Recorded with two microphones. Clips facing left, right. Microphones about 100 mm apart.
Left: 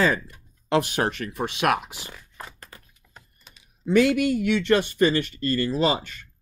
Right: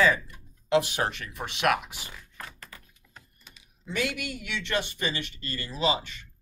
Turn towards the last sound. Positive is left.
turn(degrees=45)  # may be behind; listen again after turning